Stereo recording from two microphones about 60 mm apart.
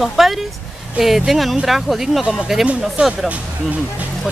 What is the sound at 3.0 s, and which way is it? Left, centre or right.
Speech, right.